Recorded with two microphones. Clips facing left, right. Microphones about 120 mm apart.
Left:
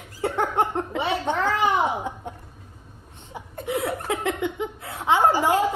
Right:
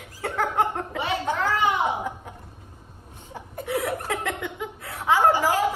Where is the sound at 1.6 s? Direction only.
40° left (ahead or behind).